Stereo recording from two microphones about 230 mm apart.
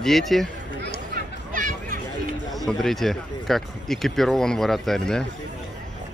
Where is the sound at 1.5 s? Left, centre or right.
Right.